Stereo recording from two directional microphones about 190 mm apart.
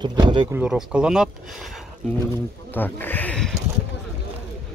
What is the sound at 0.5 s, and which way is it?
Speech, 5° right (ahead or behind).